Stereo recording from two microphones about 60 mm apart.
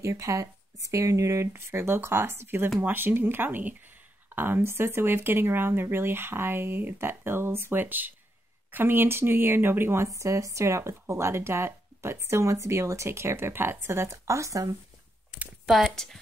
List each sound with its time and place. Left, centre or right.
0.0 s speech: right
1.5 s speech: right
10.0 s speech: right
15.6 s speech: centre